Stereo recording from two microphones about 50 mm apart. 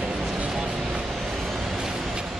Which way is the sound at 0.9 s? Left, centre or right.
Centre.